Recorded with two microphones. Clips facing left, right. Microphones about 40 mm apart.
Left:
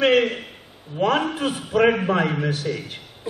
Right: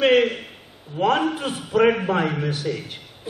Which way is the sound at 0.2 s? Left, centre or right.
Centre.